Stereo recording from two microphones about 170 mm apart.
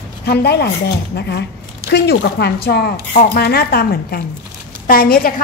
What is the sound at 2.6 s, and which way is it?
A woman's voice, 65° left (ahead or behind).